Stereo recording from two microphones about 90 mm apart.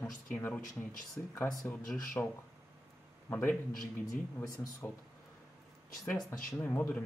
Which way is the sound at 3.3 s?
20° left (ahead or behind).